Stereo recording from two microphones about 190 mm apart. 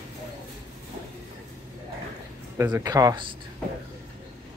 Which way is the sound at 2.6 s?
20° right (ahead or behind).